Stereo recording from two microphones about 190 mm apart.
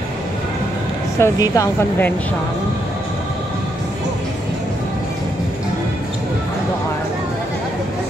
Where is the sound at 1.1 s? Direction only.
15° left (ahead or behind).